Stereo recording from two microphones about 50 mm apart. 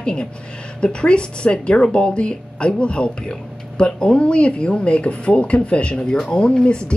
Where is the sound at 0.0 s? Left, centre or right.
Centre.